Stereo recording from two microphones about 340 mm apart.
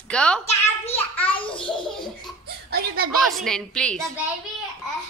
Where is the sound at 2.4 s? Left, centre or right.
Right.